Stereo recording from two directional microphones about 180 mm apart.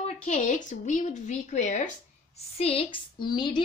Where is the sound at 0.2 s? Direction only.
45° left (ahead or behind).